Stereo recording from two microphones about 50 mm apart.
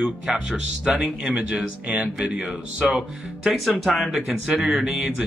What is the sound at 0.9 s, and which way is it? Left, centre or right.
Speech, right.